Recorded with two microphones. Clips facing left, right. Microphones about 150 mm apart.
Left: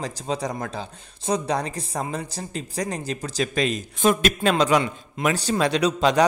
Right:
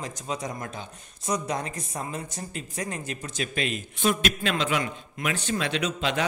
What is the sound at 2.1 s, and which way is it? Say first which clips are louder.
Speech: left 4 dB; 35° left (ahead or behind).